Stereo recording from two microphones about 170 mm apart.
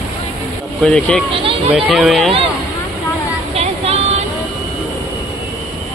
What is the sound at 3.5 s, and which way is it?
Vehicle, 35° right (ahead or behind).